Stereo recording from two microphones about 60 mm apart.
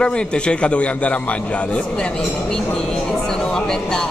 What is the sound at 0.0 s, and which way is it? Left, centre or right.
A man's voice, centre.